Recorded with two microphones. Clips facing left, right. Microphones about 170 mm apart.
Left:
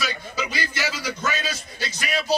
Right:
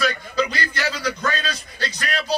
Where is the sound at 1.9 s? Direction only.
20° left (ahead or behind).